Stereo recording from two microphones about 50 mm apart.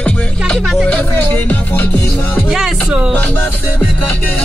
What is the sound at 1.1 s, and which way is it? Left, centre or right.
Music, left.